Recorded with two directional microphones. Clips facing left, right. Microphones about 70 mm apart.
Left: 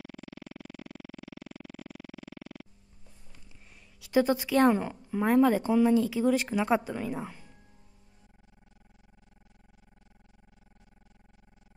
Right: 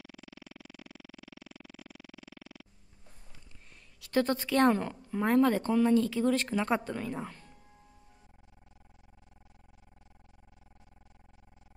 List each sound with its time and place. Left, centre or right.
0.1 s music: left
0.6 s a sound: left
2.1 s music: left
4.0 s a woman's voice: centre